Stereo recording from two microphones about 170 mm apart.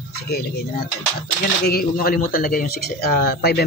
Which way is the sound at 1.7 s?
60° left (ahead or behind).